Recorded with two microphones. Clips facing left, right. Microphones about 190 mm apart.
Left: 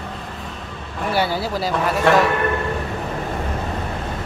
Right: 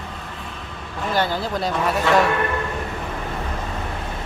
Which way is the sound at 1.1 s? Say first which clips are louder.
Left 1 dB; 10° left (ahead or behind).